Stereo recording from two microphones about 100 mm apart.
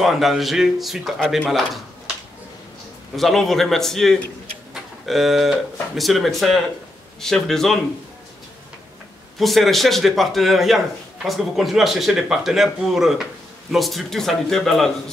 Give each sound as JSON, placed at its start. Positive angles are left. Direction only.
{"t": 0.0, "sound": "speech", "side_deg": 0}
{"t": 3.2, "sound": "speech", "side_deg": 0}
{"t": 9.4, "sound": "speech", "side_deg": 0}